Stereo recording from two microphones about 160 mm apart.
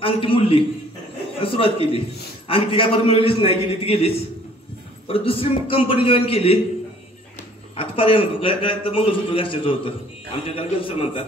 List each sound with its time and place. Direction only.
0.0 s a man's voice: 35° left (ahead or behind)
7.7 s a man's voice: 35° left (ahead or behind)